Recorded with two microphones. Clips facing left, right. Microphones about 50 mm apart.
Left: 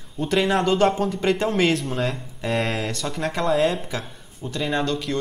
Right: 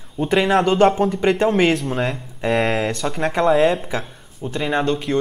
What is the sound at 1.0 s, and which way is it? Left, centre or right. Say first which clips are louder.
Speech: right 5 dB; right.